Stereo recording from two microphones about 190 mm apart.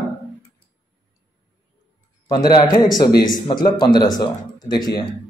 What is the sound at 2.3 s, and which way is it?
Speech, 20° left (ahead or behind).